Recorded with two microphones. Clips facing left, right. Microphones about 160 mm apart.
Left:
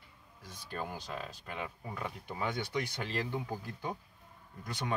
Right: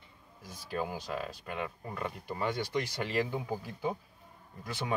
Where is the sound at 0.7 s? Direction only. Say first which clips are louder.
Right 5 dB; 5° right (ahead or behind).